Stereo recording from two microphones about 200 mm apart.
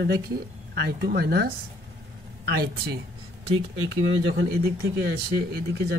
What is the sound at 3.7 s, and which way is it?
Speech, 90° right.